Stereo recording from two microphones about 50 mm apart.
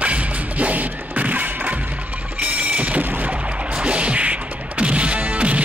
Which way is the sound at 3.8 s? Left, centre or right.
Right.